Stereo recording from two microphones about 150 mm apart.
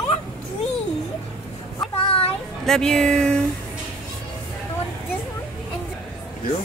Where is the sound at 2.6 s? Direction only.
5° left (ahead or behind).